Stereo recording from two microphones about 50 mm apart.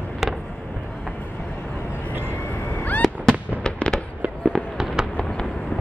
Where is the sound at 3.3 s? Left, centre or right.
Centre.